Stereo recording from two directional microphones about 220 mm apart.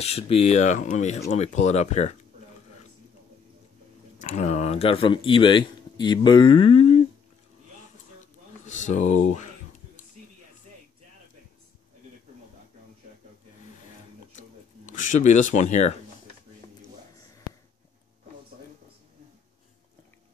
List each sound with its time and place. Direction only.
0.0 s speech: 25° left (ahead or behind)
4.2 s speech: 35° left (ahead or behind)
8.6 s speech: 35° left (ahead or behind)
14.9 s speech: 35° left (ahead or behind)